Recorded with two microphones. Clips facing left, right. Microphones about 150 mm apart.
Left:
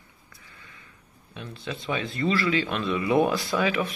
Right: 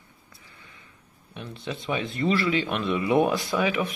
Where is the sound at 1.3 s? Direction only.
15° right (ahead or behind).